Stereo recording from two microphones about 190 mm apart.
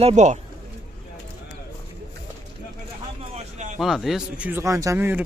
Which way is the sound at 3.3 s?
40° right (ahead or behind).